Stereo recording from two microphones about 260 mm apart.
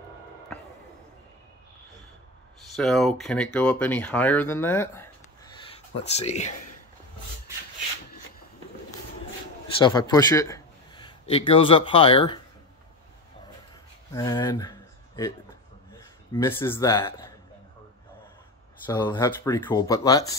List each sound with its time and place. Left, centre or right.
2.7 s speech: centre
6.1 s speech: left
9.8 s a man's voice: centre
14.1 s speech: centre
18.9 s speech: centre